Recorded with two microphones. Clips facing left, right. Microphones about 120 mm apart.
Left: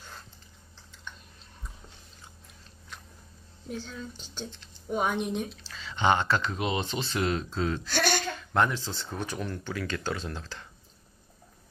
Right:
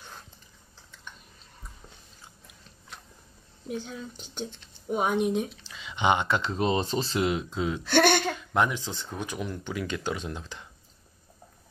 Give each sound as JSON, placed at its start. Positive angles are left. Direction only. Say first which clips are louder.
{"t": 3.8, "sound": "speech", "louder": "right 1 dB", "side_deg": -15}
{"t": 7.2, "sound": "speech", "louder": "even", "side_deg": -15}
{"t": 7.8, "sound": "speech", "louder": "right 7 dB", "side_deg": -60}
{"t": 8.5, "sound": "speech", "louder": "left 1 dB", "side_deg": -15}